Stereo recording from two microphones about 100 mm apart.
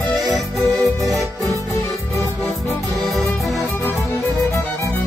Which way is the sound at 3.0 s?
Centre (ahead or behind).